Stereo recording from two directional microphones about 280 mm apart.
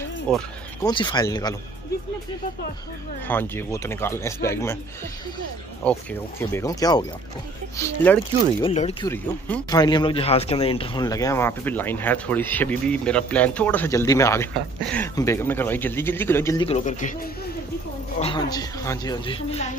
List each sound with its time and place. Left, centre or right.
0.3 s speech: centre
0.8 s speech: centre
3.3 s speech: centre
5.8 s speech: centre
8.6 s a man's voice: centre
16.6 s a man's voice: left
18.2 s speech: centre